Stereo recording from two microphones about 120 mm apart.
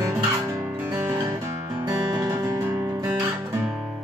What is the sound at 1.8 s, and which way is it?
Music, 35° right (ahead or behind).